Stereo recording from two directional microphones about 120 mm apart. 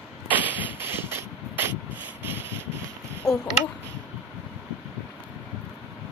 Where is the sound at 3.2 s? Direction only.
Centre (ahead or behind).